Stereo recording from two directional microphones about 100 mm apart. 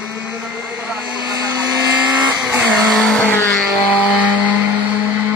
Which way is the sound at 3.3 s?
20° left (ahead or behind).